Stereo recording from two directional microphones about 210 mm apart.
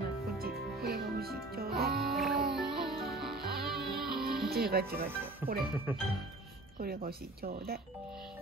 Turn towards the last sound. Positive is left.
turn(degrees=-45)  # may be behind; listen again after turning